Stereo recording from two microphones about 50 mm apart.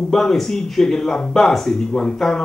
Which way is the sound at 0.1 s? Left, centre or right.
Centre.